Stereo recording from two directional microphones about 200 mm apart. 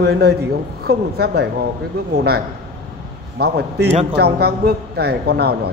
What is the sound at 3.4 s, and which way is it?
A man's voice, 55° right (ahead or behind).